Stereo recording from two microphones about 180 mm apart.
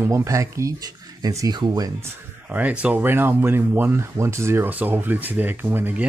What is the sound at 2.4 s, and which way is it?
Speech, 10° right (ahead or behind).